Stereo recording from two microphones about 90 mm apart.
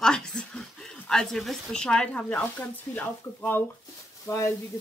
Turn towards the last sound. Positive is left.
turn(degrees=30)  # may be behind; listen again after turning